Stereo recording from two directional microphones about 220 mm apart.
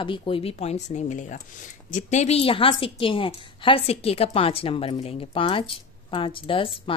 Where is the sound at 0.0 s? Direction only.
20° left (ahead or behind).